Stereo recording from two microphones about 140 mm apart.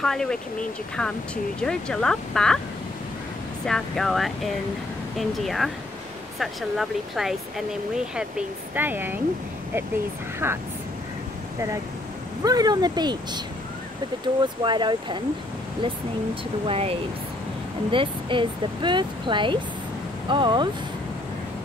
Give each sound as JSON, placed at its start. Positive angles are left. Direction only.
{"t": 0.0, "sound": "speech", "side_deg": 5}
{"t": 3.6, "sound": "speech", "side_deg": 5}
{"t": 10.4, "sound": "speech", "side_deg": -15}
{"t": 12.4, "sound": "speech", "side_deg": -25}
{"t": 14.4, "sound": "speech", "side_deg": -35}
{"t": 16.6, "sound": "speech", "side_deg": -45}
{"t": 17.9, "sound": "speech", "side_deg": -35}